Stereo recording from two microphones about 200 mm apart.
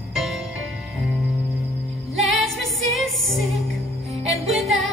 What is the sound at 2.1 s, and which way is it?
Music, centre (ahead or behind).